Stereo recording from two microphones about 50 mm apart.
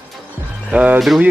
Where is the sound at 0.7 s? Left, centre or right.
Right.